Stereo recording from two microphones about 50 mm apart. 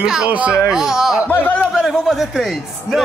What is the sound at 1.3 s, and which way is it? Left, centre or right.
Speech, left.